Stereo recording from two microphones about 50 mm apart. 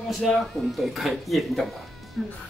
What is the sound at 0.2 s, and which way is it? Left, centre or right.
Speech, centre.